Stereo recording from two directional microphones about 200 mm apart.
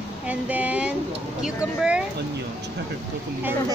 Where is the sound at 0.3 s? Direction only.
5° right (ahead or behind).